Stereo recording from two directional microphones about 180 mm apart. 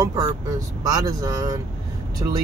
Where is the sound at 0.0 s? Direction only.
20° right (ahead or behind).